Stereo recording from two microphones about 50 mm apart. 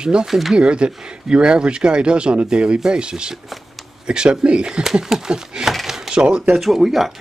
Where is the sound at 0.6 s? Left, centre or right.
Centre.